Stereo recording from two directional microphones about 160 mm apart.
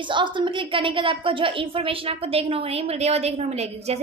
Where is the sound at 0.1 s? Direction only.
30° right (ahead or behind).